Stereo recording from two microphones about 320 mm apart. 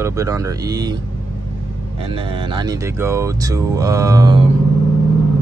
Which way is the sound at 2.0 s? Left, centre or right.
Centre.